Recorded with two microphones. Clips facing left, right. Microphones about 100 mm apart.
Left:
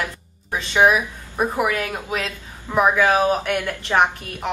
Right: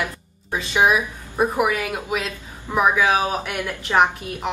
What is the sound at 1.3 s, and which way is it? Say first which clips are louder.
A woman's voice: right 1 dB; 10° right (ahead or behind).